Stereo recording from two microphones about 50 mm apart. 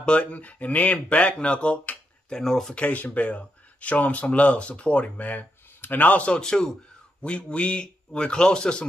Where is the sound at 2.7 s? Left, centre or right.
Left.